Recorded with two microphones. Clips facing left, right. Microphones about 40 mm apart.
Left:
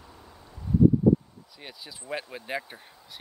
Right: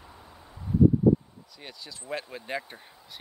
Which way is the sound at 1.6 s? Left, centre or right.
Centre.